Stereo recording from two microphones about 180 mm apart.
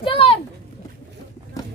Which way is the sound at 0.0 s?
30° left (ahead or behind).